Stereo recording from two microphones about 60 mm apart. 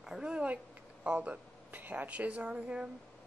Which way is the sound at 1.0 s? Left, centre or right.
Right.